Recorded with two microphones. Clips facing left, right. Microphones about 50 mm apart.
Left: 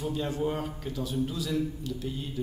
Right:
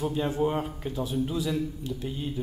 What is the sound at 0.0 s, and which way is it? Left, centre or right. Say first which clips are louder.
Speech: right 3 dB; right.